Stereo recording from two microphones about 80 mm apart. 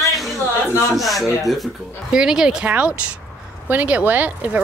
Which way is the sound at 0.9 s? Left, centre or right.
Centre.